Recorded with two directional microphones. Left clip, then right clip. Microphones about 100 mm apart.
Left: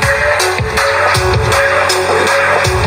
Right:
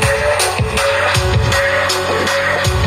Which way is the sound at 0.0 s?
Centre (ahead or behind).